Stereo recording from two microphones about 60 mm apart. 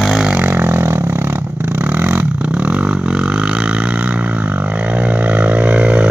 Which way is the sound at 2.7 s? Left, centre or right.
Centre.